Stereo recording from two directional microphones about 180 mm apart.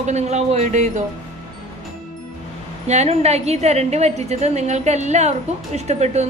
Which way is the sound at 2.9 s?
35° right (ahead or behind).